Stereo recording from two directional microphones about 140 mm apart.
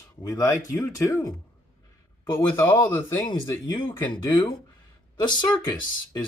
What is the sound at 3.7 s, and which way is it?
Speech, 35° left (ahead or behind).